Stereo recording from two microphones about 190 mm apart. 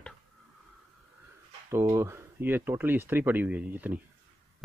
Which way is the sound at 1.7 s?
15° right (ahead or behind).